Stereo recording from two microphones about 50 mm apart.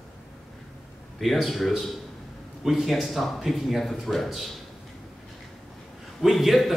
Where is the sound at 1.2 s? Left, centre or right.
Centre.